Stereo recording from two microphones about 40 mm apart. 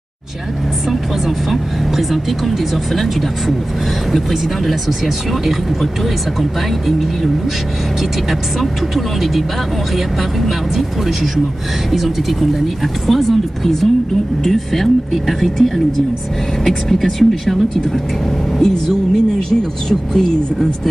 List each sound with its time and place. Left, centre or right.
0.8 s speech: centre
8.3 s speech: centre
18.6 s speech: centre